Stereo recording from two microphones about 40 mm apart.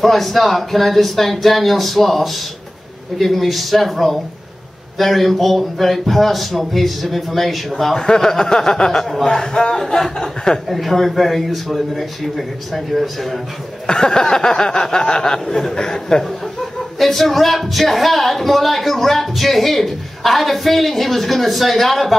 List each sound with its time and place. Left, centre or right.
0.0 s speech: centre
10.7 s speech: centre
13.8 s speech: centre
17.0 s speech: centre